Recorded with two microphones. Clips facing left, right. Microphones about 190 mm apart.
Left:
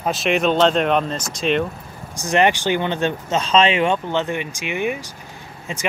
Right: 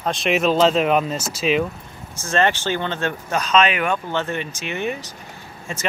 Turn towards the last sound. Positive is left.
turn(degrees=15)  # may be behind; listen again after turning